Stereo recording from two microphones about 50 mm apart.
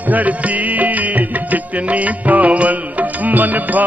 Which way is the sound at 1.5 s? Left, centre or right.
Right.